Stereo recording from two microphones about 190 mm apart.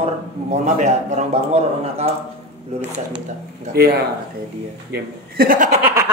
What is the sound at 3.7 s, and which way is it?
A man's voice, 55° right (ahead or behind).